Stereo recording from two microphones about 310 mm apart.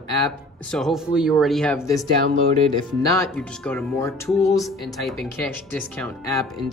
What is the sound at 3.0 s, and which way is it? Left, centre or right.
Speech, centre.